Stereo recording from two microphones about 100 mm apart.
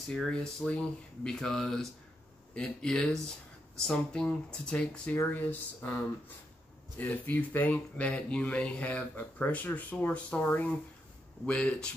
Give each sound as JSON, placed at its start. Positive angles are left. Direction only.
{"t": 0.1, "sound": "speech", "side_deg": 5}
{"t": 5.1, "sound": "speech", "side_deg": 20}